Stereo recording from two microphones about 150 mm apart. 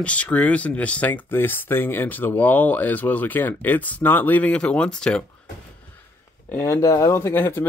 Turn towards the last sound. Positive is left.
turn(degrees=15)  # may be behind; listen again after turning